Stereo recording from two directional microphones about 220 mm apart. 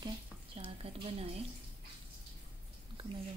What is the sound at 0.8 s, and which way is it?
Speech, 25° right (ahead or behind).